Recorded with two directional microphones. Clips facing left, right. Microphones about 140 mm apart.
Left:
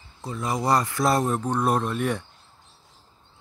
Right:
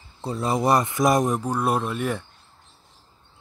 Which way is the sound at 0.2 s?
30° right (ahead or behind).